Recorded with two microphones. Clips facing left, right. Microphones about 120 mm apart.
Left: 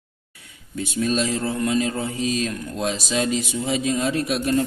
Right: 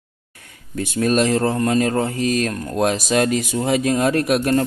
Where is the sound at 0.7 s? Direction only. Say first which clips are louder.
Right 5 dB; 55° right (ahead or behind).